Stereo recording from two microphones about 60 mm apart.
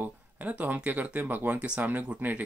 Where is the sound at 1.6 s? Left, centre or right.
Centre.